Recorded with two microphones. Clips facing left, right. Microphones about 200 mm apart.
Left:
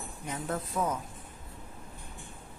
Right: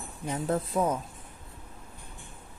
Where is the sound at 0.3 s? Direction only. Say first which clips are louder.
Right 6 dB; 30° right (ahead or behind).